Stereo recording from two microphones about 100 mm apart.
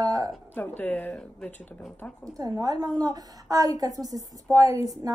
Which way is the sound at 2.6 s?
40° right (ahead or behind).